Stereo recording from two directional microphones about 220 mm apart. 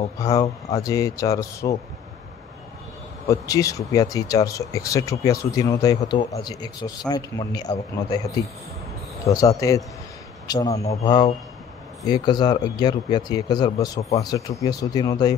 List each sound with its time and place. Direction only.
0.2 s speech: 15° left (ahead or behind)
3.3 s speech: 15° left (ahead or behind)
9.2 s a man's voice: 15° left (ahead or behind)